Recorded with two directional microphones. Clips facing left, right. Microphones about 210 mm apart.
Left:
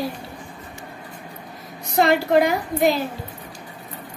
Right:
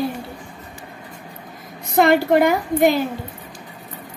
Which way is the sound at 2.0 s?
55° right (ahead or behind).